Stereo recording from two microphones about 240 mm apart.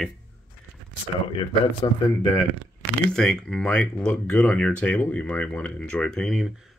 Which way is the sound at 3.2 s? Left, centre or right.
Centre.